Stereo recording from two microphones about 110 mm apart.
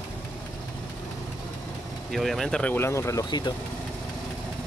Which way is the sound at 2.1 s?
Centre (ahead or behind).